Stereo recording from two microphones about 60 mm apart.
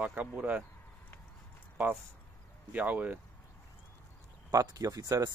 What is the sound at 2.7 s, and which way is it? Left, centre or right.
Speech, right.